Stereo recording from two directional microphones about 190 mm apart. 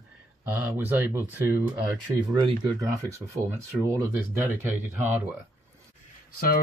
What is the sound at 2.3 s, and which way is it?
Speech, 25° right (ahead or behind).